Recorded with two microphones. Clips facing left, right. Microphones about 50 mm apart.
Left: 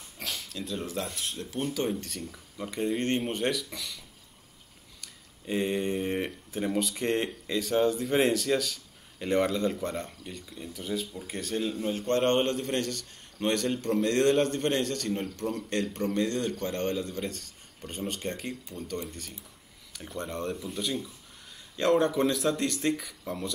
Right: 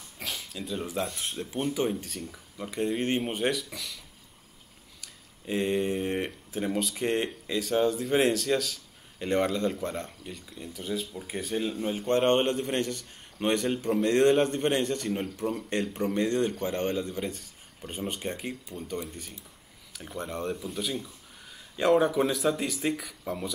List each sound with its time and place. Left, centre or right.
0.2 s a sound: centre
1.1 s speech: right
1.9 s speech: centre
5.0 s a man's voice: centre